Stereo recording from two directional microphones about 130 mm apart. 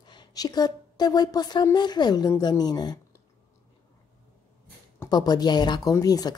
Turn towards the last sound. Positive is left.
turn(degrees=30)  # may be behind; listen again after turning